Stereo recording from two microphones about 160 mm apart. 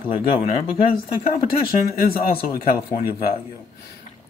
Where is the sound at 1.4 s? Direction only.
65° left (ahead or behind).